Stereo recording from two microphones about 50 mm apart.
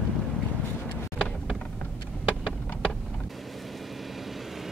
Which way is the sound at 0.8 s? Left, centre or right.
Left.